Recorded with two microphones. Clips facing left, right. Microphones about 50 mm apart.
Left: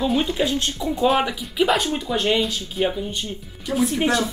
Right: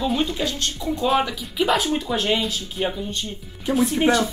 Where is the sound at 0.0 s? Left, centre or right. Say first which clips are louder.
Left 2 dB; centre.